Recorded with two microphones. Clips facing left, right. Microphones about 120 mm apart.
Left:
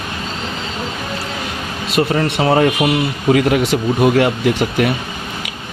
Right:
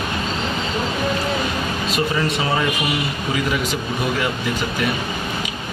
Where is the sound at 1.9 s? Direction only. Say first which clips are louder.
Left 7 dB; 55° left (ahead or behind).